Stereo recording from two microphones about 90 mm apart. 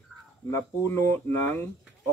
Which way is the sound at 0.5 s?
30° left (ahead or behind).